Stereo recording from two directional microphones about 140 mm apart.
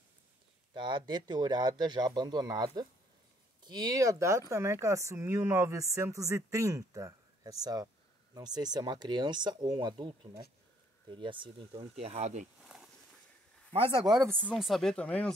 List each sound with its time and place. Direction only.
0.7 s a man's voice: 35° right (ahead or behind); by 12.4 s 55° right (ahead or behind)
12.6 s walk: 5° right (ahead or behind)
13.7 s speech: 40° right (ahead or behind)
14.5 s speech: centre (ahead or behind)